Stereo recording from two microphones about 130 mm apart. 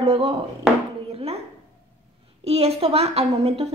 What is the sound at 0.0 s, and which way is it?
Speech, 50° right (ahead or behind).